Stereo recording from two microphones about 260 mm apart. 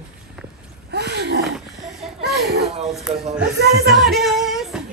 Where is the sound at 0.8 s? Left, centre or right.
Right.